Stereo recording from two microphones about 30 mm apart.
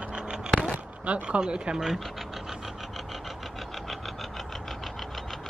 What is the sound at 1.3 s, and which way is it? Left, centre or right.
Speech, right.